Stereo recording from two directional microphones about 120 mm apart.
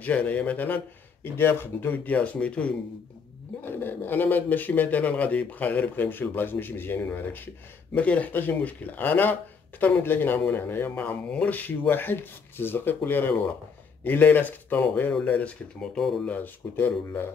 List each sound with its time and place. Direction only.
0.0 s speech: 10° left (ahead or behind)
16.3 s speech: 15° left (ahead or behind)